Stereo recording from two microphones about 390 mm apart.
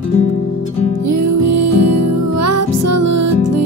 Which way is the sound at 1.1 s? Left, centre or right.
Right.